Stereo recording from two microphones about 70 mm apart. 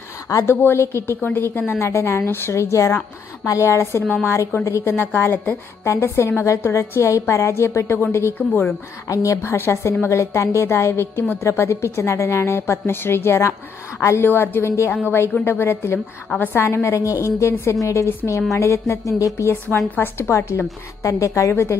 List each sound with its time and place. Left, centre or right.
0.3 s a woman's voice: left
1.8 s a woman's voice: left
4.1 s a woman's voice: left
4.6 s a woman's voice: left
5.1 s a woman's voice: left
8.4 s a woman's voice: left
9.0 s a woman's voice: left